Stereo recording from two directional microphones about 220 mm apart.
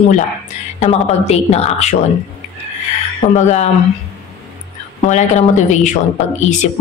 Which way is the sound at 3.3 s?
30° left (ahead or behind).